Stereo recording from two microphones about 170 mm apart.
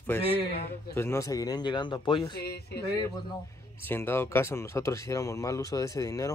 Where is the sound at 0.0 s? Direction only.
10° left (ahead or behind); by 2.3 s 25° left (ahead or behind).